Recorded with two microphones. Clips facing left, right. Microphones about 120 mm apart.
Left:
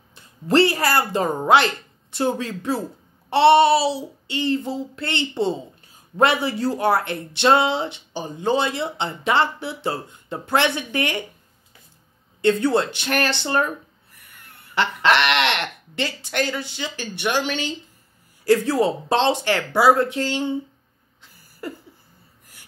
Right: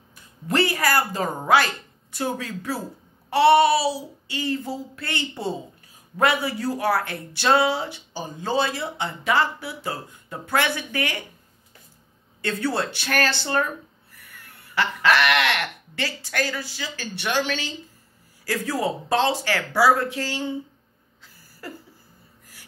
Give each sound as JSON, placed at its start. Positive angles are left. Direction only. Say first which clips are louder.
{"t": 0.1, "sound": "speech", "louder": "left 7 dB", "side_deg": 30}
{"t": 12.4, "sound": "speech", "louder": "left 7 dB", "side_deg": 20}